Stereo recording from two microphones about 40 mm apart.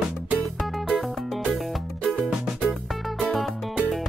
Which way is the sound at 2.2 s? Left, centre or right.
Centre.